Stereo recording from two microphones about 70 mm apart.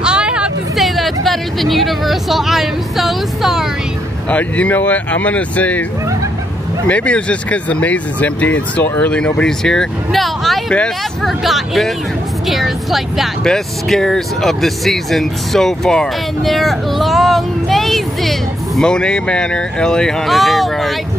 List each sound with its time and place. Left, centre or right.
0.0 s hubbub: centre
0.7 s speech: centre
4.3 s speech: left
6.9 s speech: centre